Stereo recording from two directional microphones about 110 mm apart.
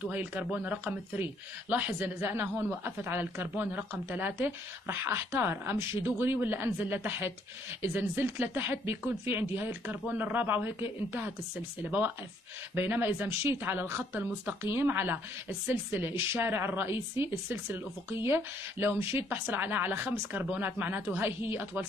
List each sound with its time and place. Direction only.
0.0 s a man's voice: 15° right (ahead or behind)
12.7 s a woman's voice: 20° right (ahead or behind)